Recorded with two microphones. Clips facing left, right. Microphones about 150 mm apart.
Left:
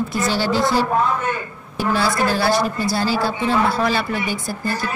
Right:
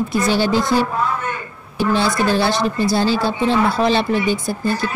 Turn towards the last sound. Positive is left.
turn(degrees=-25)  # may be behind; listen again after turning